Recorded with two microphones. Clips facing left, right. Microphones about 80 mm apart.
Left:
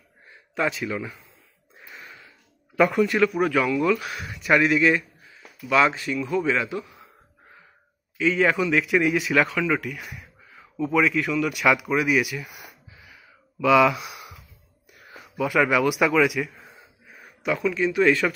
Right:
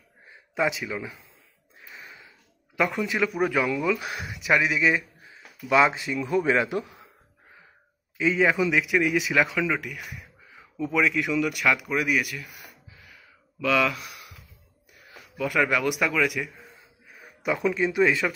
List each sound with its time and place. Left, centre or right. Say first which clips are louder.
0.3 s speech: even; centre
2.0 s a sound: left 1 dB; centre
2.8 s speech: left 6 dB; centre
4.0 s speech: even; right
4.3 s speech: left 4 dB; centre
5.2 s a sound: left 1 dB; right
6.1 s speech: right 1 dB; right
8.4 s speech: left 1 dB; centre
12.4 s speech: left 4 dB; centre
13.1 s sigh: left 2 dB; centre
15.3 s a man's voice: left 3 dB; centre
17.6 s speech: even; right